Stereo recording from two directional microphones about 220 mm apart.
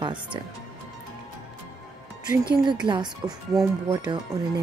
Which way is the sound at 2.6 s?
20° right (ahead or behind).